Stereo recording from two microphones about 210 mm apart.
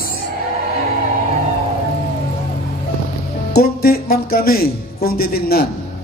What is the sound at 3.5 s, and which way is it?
A man's voice, 45° left (ahead or behind).